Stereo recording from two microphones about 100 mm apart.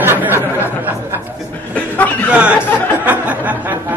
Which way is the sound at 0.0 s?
20° right (ahead or behind).